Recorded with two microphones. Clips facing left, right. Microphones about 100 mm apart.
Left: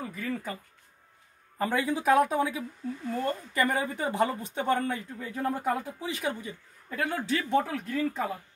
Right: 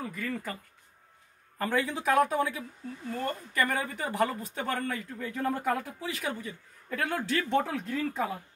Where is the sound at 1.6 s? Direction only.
15° left (ahead or behind).